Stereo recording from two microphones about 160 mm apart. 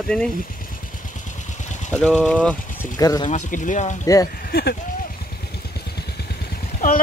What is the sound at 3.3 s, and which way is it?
Speech, 55° left (ahead or behind).